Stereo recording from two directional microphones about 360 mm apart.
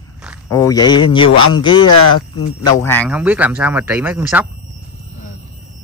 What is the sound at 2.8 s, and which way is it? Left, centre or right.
Speech, centre.